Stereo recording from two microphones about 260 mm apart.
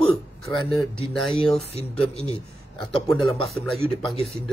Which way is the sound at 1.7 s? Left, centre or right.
Left.